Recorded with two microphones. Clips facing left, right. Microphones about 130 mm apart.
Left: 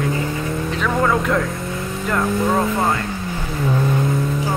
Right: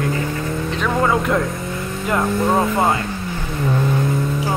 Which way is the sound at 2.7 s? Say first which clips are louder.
Right 2 dB; 25° right (ahead or behind).